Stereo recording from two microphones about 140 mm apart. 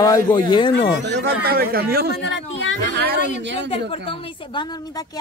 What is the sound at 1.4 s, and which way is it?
Speech, 90° right.